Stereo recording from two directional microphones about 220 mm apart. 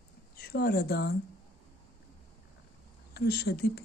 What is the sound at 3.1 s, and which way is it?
Speech, 45° left (ahead or behind).